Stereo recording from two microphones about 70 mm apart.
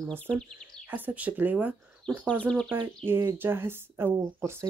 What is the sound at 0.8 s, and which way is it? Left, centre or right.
Speech, right.